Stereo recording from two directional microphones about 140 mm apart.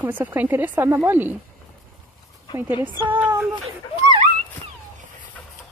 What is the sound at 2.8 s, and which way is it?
Speech, 35° right (ahead or behind).